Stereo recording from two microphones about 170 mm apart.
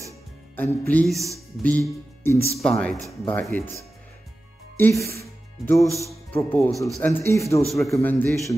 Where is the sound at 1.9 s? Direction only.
15° left (ahead or behind).